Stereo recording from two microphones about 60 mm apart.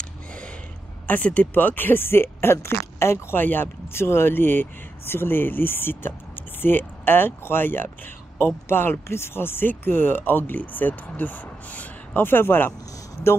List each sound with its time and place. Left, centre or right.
1.0 s speech: left